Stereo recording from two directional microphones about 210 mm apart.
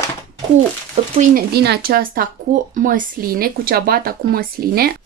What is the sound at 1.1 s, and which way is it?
Speech, 45° right (ahead or behind).